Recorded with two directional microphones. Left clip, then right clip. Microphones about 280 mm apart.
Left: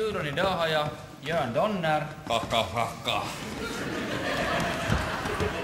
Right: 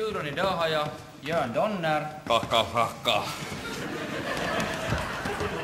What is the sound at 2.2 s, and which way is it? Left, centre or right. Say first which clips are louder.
A man's voice: right 5 dB; right.